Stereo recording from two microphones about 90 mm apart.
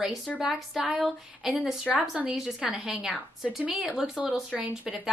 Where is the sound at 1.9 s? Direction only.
15° right (ahead or behind).